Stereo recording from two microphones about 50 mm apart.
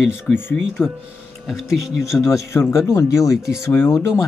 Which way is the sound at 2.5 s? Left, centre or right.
Left.